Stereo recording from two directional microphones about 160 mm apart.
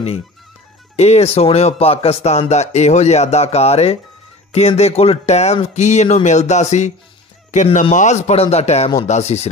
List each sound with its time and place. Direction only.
0.9 s speech: 40° left (ahead or behind)